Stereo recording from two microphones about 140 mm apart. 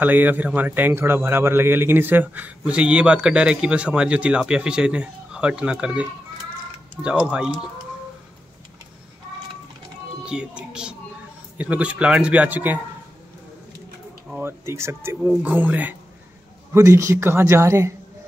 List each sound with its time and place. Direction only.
0.0 s speech: 10° right (ahead or behind)
10.2 s speech: 5° right (ahead or behind)
14.3 s speech: 15° right (ahead or behind)